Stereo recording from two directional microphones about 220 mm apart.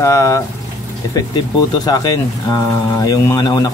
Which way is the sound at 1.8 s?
15° left (ahead or behind).